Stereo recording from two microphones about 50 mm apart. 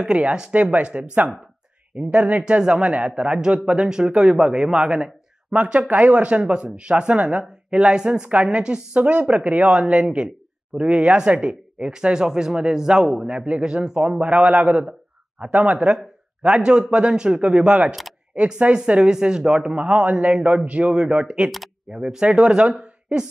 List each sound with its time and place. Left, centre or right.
0.1 s a woman's voice: centre
14.2 s a man's voice: right